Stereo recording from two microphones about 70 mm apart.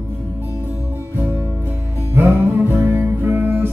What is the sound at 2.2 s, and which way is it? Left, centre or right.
Music, right.